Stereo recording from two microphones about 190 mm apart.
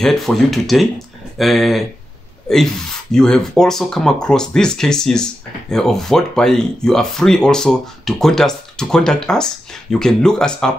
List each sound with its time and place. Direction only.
0.0 s speech: centre (ahead or behind)